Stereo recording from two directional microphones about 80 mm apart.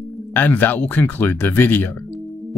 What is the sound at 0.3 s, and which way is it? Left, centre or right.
Speech, left.